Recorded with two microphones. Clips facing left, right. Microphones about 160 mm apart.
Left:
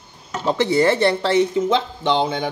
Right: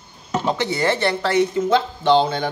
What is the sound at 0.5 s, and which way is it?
Speech, 30° left (ahead or behind).